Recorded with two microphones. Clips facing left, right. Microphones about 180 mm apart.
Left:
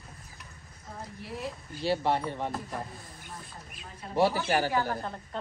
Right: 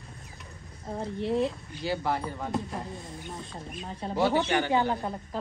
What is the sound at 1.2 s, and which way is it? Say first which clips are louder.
Speech: right 12 dB; 25° right (ahead or behind).